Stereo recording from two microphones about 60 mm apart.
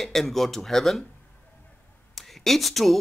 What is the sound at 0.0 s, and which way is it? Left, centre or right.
Speech, centre.